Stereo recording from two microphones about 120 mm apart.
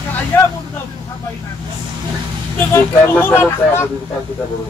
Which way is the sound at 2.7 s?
20° left (ahead or behind).